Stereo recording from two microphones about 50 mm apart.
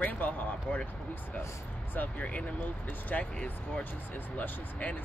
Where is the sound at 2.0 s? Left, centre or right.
Left.